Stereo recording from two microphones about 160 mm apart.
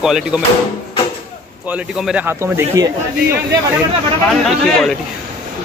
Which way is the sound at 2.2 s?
20° right (ahead or behind).